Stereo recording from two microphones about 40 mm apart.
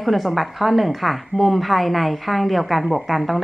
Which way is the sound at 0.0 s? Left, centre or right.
Centre.